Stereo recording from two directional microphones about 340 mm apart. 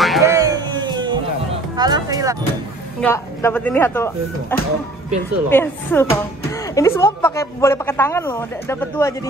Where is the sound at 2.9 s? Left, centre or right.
Centre.